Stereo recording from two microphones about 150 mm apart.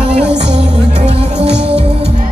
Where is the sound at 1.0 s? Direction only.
40° right (ahead or behind).